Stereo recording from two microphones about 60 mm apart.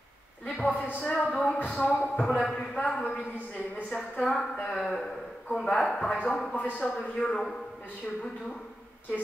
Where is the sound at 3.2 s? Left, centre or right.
Left.